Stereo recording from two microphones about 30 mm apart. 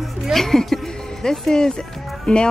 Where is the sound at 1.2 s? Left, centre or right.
Left.